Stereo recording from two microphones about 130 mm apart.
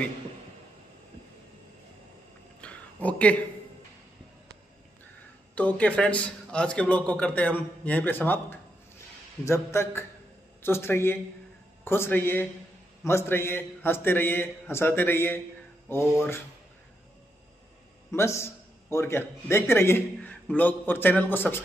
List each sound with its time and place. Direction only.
2.6 s a sound: 10° left (ahead or behind)
5.5 s a man's voice: 10° left (ahead or behind)
18.1 s a man's voice: 20° left (ahead or behind)